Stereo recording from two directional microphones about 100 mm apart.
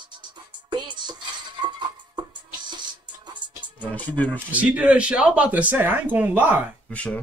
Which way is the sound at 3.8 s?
15° left (ahead or behind).